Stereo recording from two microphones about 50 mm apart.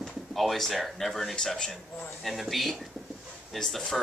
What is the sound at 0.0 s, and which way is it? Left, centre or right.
Speech, centre.